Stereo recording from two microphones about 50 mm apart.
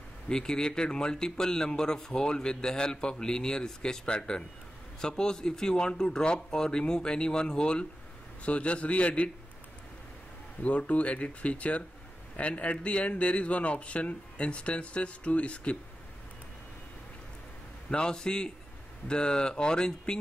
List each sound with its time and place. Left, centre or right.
0.3 s speech: centre
10.6 s speech: left
17.8 s speech: centre